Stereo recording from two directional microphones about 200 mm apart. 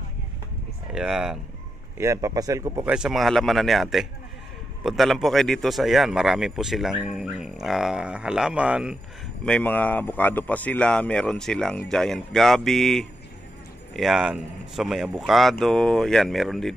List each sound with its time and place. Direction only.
0.9 s speech: 5° right (ahead or behind)
2.0 s speech: 15° right (ahead or behind)
2.9 s speech: 5° right (ahead or behind)
9.4 s speech: 5° left (ahead or behind)